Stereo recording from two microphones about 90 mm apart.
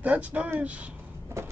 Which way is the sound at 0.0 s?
15° right (ahead or behind).